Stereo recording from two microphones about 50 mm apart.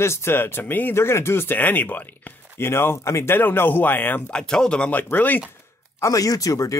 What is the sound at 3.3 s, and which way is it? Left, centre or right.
Speech, left.